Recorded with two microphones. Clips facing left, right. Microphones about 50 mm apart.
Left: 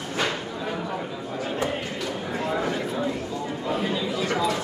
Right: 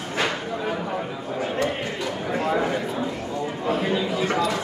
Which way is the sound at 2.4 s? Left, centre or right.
Centre.